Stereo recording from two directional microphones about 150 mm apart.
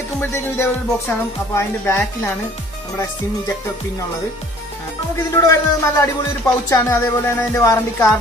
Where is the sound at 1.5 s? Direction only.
15° left (ahead or behind).